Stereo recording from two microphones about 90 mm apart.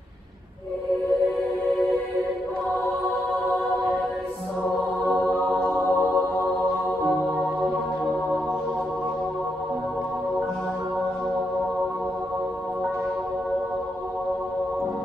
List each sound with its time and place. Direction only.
5.0 s music: 10° left (ahead or behind)